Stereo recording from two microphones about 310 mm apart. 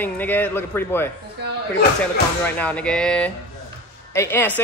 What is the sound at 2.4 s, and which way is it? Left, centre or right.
A man's voice, centre.